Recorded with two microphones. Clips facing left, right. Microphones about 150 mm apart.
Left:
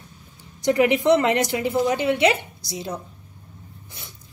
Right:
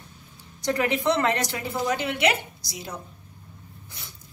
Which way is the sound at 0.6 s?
20° left (ahead or behind).